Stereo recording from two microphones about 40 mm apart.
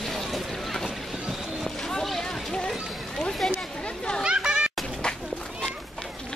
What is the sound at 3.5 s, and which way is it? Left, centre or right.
Chatter, left.